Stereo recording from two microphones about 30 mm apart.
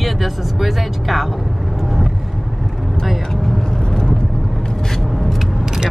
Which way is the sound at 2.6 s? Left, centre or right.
Centre.